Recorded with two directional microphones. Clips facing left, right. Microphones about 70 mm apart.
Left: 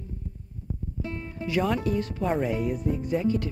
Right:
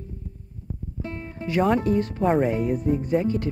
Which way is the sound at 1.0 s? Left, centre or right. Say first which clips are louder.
Right 2 dB; right.